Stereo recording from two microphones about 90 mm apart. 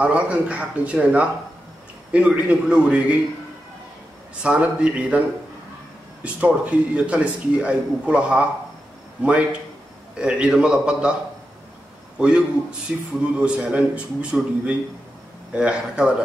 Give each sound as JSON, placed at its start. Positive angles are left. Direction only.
{"t": 0.0, "sound": "speech", "side_deg": -15}
{"t": 4.4, "sound": "speech", "side_deg": -10}
{"t": 6.2, "sound": "speech", "side_deg": -15}
{"t": 12.2, "sound": "speech", "side_deg": -10}